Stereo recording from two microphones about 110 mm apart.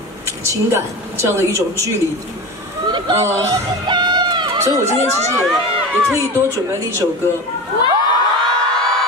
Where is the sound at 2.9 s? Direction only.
45° right (ahead or behind).